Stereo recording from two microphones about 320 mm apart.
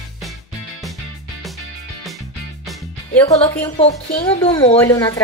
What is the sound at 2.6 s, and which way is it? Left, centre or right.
Music, centre.